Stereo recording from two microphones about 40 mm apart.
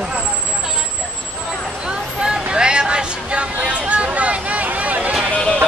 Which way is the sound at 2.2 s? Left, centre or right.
Right.